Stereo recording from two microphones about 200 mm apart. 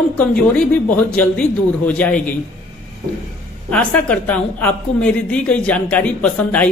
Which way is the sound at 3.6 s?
5° left (ahead or behind).